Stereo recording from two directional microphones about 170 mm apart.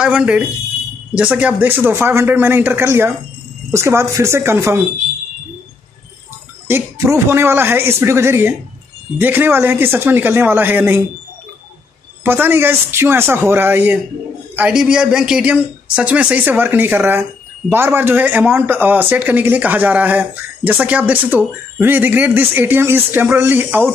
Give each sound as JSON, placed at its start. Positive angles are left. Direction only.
{"t": 0.0, "sound": "a man's voice", "side_deg": -5}
{"t": 6.7, "sound": "a man's voice", "side_deg": -15}
{"t": 12.2, "sound": "a man's voice", "side_deg": -10}